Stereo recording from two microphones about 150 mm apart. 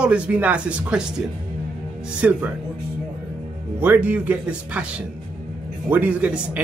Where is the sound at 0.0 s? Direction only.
10° right (ahead or behind).